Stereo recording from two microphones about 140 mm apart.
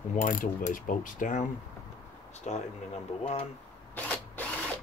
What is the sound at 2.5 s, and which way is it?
Speech, 55° left (ahead or behind).